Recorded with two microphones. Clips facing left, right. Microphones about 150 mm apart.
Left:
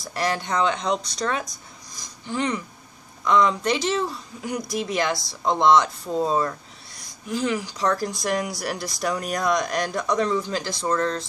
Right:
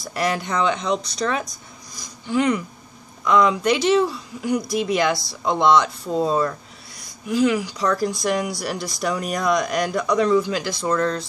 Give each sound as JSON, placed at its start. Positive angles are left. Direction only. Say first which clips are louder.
{"t": 0.0, "sound": "speech", "louder": "right 2 dB", "side_deg": -5}
{"t": 2.2, "sound": "speech", "louder": "right 6 dB", "side_deg": -5}